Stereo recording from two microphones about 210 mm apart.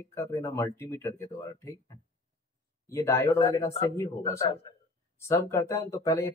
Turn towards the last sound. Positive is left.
turn(degrees=15)  # may be behind; listen again after turning